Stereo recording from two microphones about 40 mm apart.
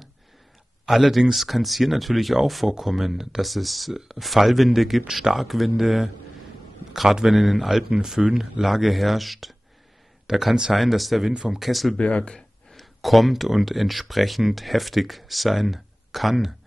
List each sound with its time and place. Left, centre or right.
0.8 s speech: centre
10.2 s speech: centre
11.3 s speech: centre
11.6 s speech: centre
12.0 s speech: left
12.7 s speech: centre